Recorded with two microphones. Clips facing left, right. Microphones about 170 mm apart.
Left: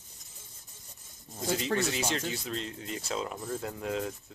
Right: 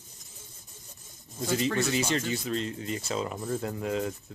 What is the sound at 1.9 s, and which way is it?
Speech, centre (ahead or behind).